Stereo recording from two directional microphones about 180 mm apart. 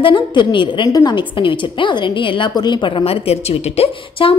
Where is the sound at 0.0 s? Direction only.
25° left (ahead or behind).